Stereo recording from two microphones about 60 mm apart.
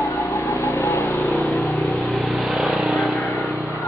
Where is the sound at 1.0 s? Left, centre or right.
Left.